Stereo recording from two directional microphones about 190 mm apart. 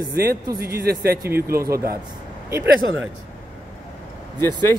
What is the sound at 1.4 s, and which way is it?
Speech, 15° right (ahead or behind).